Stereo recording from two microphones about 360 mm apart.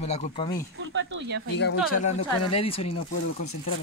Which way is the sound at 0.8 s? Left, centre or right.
Right.